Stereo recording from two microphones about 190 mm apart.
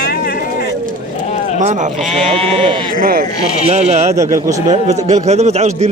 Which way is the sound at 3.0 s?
50° right (ahead or behind).